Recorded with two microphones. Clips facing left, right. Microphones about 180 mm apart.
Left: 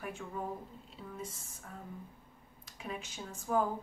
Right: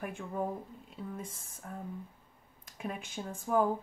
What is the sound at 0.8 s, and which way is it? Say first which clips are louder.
Speech: right 2 dB; 55° right (ahead or behind).